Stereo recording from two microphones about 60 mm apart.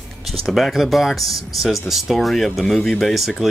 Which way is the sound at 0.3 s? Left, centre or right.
Centre.